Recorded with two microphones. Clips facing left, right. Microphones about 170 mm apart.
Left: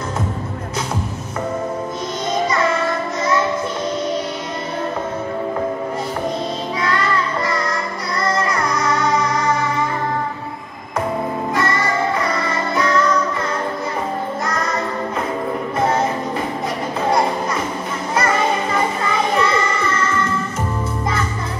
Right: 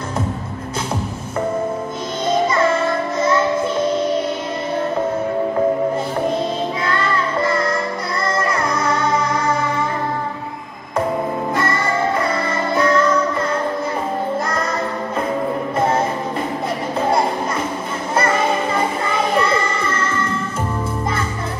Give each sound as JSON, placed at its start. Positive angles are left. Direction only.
{"t": 6.8, "sound": "music", "side_deg": -25}
{"t": 11.5, "sound": "music", "side_deg": -30}
{"t": 18.8, "sound": "music", "side_deg": -30}